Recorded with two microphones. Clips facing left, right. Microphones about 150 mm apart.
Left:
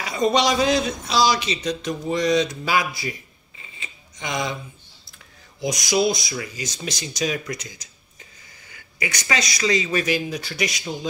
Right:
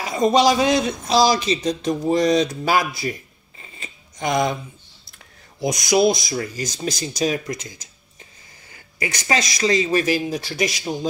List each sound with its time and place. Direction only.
0.0 s speech: 45° right (ahead or behind)
5.6 s rub: 25° right (ahead or behind)
6.0 s speech: 45° right (ahead or behind)